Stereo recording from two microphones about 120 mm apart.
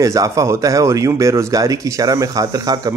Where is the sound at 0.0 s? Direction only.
30° right (ahead or behind).